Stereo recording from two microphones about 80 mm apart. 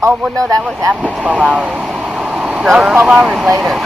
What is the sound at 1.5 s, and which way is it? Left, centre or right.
Vehicle, centre.